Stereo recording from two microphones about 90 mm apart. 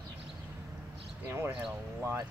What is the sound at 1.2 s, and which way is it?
Speech, 25° right (ahead or behind).